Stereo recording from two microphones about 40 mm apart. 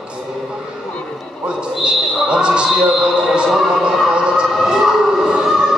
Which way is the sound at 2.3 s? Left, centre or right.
Right.